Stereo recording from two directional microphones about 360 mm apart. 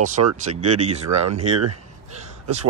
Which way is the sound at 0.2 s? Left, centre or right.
Right.